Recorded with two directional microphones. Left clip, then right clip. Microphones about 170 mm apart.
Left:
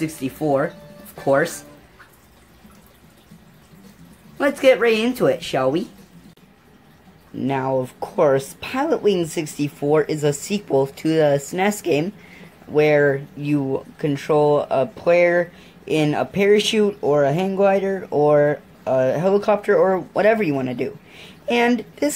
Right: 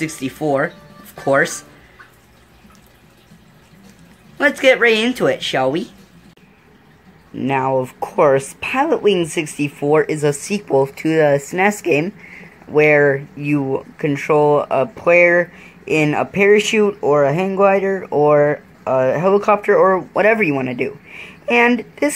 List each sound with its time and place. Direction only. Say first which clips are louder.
0.0 s a woman's voice: right 2 dB; centre (ahead or behind)
4.4 s a woman's voice: right 3 dB; 5° left (ahead or behind)
7.4 s a woman's voice: right 4 dB; centre (ahead or behind)
11.7 s speech: right 4 dB; 15° left (ahead or behind)
12.0 s a woman's voice: right 3 dB; centre (ahead or behind)
17.1 s speech: right 3 dB; 15° left (ahead or behind)
17.5 s a woman's voice: right 4 dB; centre (ahead or behind)